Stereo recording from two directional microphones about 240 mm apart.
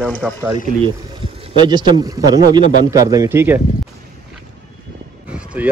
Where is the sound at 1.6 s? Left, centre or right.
Centre.